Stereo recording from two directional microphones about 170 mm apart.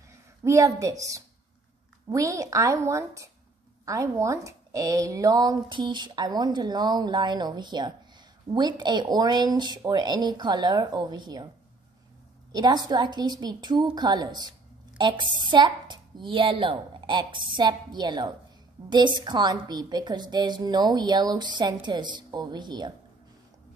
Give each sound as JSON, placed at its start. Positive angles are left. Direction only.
{"t": 0.1, "sound": "a woman's voice", "side_deg": -15}
{"t": 12.5, "sound": "a woman's voice", "side_deg": -25}